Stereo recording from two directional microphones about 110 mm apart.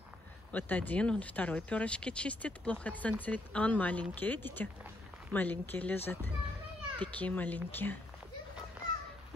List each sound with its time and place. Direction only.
0.5 s speech: 15° left (ahead or behind)